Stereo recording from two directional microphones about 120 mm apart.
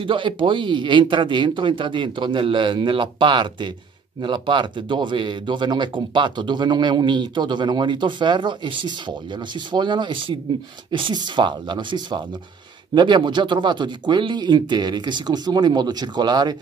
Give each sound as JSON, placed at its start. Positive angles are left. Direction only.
{"t": 0.0, "sound": "speech", "side_deg": -45}